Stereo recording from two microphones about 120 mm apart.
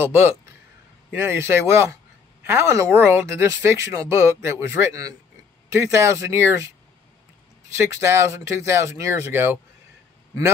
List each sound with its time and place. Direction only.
0.0 s speech: 20° right (ahead or behind)
7.7 s speech: 20° right (ahead or behind)